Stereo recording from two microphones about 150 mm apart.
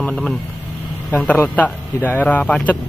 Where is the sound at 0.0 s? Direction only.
5° left (ahead or behind).